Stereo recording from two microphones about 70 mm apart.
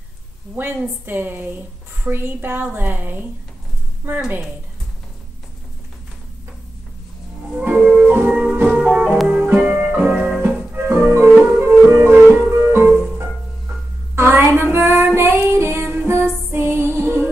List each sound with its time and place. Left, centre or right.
0.6 s a woman's voice: right
7.6 s music: right
8.3 s music: centre; by 12.8 s right
14.1 s female singing: right